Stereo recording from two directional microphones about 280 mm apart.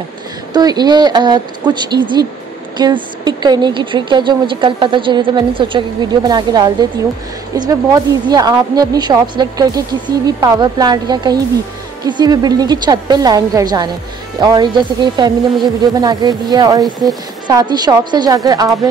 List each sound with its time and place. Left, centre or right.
0.5 s a woman's voice: centre